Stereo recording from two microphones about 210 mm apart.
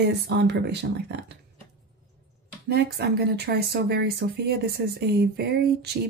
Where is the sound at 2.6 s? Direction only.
50° right (ahead or behind).